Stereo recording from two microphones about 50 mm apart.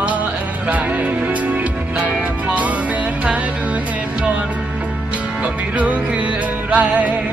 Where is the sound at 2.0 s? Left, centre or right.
Right.